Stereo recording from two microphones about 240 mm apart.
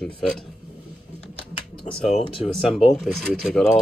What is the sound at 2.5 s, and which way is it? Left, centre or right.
A man's voice, centre.